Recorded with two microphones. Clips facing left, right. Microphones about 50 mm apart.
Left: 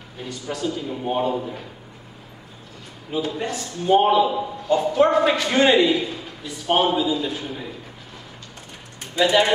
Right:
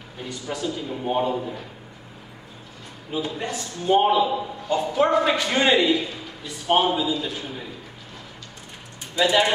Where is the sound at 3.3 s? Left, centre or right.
Centre.